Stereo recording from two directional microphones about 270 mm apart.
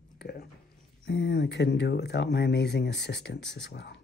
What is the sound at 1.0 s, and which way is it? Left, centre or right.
Speech, left.